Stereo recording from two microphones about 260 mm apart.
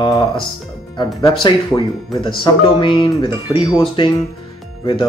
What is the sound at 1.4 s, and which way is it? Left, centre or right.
Speech, centre.